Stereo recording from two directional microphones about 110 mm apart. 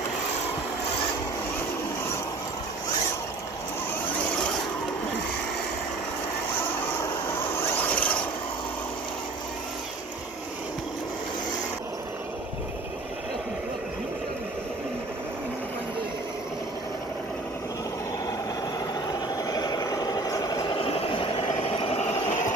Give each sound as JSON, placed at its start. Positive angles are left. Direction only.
{"t": 7.5, "sound": "a sound", "side_deg": 20}
{"t": 19.3, "sound": "vehicle", "side_deg": 35}
{"t": 20.7, "sound": "vehicle", "side_deg": 60}